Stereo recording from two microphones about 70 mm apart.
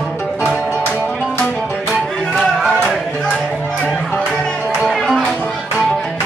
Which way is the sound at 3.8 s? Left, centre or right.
Left.